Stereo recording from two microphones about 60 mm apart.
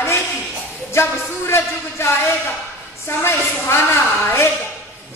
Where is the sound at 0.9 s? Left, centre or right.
Left.